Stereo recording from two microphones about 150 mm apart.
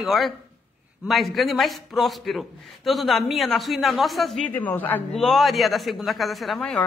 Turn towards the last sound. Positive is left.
turn(degrees=0)  # may be behind; listen again after turning